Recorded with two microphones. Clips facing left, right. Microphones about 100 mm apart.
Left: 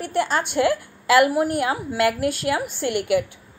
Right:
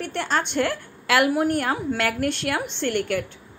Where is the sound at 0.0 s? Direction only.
10° left (ahead or behind).